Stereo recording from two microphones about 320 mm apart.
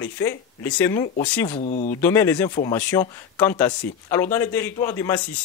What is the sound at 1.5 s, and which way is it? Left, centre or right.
Speech, left.